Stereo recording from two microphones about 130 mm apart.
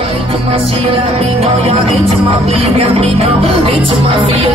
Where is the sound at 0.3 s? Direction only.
45° right (ahead or behind).